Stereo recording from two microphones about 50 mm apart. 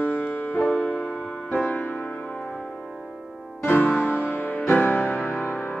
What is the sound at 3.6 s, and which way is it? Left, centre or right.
Music, left.